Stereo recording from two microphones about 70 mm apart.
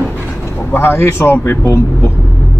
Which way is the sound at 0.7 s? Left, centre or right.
Left.